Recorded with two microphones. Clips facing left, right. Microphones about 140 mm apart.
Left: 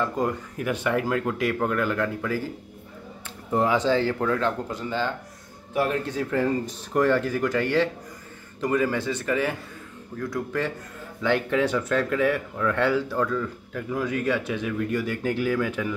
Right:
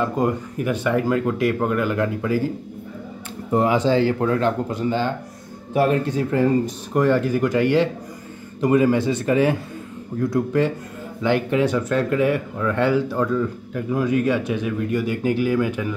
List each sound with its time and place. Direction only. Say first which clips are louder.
0.0 s speech: right 4 dB; 10° right (ahead or behind)
0.7 s speech: right 4 dB; centre (ahead or behind)
3.5 s speech: right 4 dB; 10° right (ahead or behind)
6.1 s speech: right 5 dB; 10° right (ahead or behind); by 10.7 s 25° right (ahead or behind)
11.2 s speech: right 4 dB; 10° right (ahead or behind)